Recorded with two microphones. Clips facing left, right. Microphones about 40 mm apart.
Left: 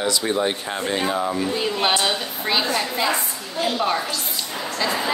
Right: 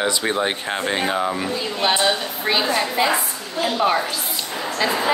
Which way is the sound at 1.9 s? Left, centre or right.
Centre.